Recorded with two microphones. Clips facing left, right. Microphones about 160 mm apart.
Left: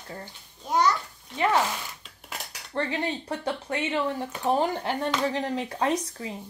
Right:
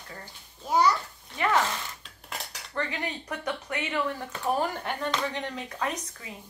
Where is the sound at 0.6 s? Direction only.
5° right (ahead or behind).